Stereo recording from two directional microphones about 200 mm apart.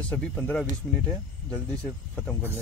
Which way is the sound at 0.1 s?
10° left (ahead or behind).